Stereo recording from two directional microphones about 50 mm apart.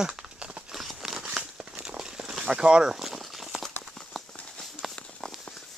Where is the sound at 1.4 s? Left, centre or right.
Centre.